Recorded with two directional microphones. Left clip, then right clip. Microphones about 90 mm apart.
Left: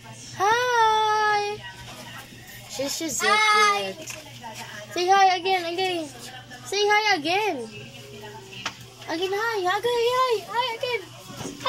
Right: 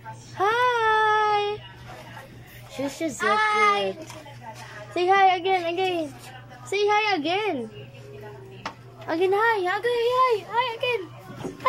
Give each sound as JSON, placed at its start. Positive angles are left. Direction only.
{"t": 0.4, "sound": "child singing", "side_deg": -15}
{"t": 2.8, "sound": "a child's voice", "side_deg": -20}
{"t": 4.9, "sound": "a child's voice", "side_deg": -15}
{"t": 9.0, "sound": "a child's voice", "side_deg": -15}